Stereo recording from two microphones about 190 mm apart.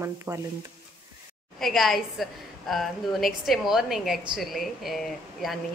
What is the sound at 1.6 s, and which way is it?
A woman's voice, centre (ahead or behind).